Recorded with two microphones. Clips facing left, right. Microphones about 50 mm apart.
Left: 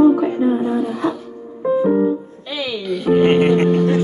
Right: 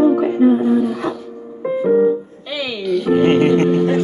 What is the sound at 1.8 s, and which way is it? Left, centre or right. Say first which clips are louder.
Music: right 5 dB; centre.